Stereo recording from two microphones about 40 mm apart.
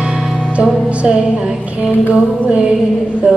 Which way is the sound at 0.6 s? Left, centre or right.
Right.